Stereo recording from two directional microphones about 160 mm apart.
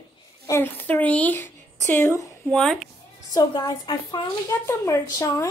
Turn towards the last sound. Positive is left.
turn(degrees=15)  # may be behind; listen again after turning